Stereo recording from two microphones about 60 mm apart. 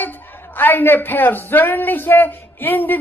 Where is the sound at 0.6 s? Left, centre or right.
Left.